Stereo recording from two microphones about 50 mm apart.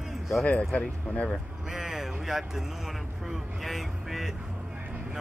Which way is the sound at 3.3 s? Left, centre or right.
Centre.